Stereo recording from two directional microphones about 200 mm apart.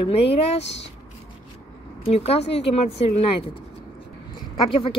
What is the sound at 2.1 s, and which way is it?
Speech, 30° left (ahead or behind).